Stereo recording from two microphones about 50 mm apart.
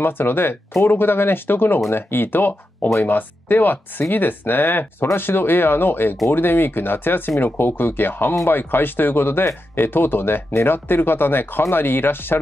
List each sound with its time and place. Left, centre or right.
0.0 s speech: left